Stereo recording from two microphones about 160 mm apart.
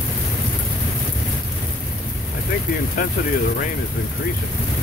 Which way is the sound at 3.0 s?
60° left (ahead or behind).